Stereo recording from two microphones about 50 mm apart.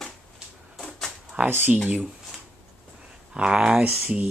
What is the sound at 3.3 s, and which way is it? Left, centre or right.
Speech, centre.